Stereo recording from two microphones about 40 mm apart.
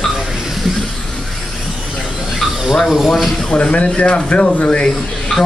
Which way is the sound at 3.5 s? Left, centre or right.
Left.